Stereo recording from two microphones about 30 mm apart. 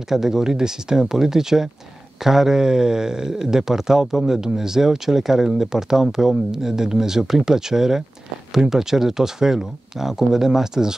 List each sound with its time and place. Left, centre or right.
0.1 s speech: centre